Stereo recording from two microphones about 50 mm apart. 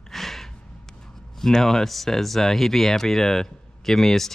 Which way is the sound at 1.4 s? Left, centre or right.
Centre.